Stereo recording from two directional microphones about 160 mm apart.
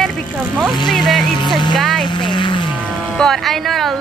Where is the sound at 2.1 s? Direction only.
30° left (ahead or behind).